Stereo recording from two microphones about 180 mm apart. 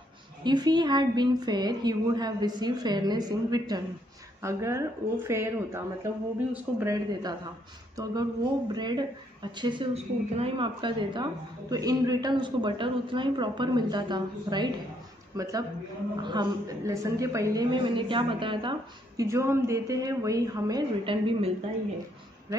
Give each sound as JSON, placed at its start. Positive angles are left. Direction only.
{"t": 0.4, "sound": "a woman's voice", "side_deg": -25}
{"t": 22.5, "sound": "speech", "side_deg": -15}